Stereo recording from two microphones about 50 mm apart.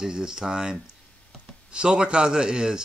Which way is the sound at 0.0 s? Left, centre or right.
Centre.